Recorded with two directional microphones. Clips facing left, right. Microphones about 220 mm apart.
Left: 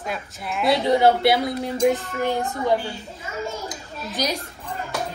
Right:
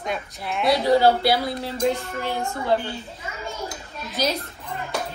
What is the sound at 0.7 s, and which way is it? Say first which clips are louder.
Speech: even; 20° left (ahead or behind).